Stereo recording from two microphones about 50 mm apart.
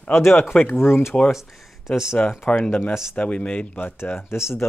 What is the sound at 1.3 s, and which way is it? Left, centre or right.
Speech, centre.